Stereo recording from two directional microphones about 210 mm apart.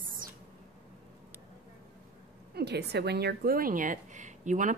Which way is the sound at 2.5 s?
50° right (ahead or behind).